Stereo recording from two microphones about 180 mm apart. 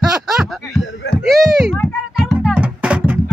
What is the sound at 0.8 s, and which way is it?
Speech, 85° left.